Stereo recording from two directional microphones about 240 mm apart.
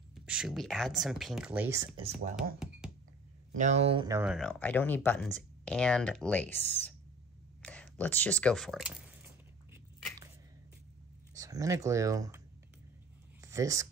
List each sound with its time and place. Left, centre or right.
0.1 s speech: centre
3.5 s speech: right
4.2 s speech: centre
11.3 s speech: centre
13.4 s a sound: centre